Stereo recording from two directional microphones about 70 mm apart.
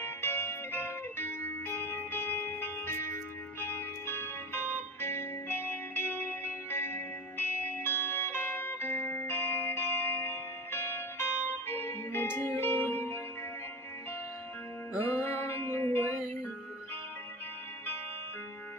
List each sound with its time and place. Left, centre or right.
0.0 s music: left
15.0 s music: left